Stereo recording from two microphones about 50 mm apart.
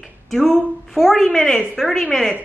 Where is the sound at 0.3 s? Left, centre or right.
Centre.